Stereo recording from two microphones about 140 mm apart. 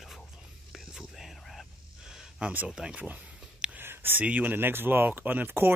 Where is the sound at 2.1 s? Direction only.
5° right (ahead or behind).